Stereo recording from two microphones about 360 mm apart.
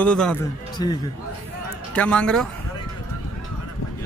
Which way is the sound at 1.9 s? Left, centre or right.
Centre.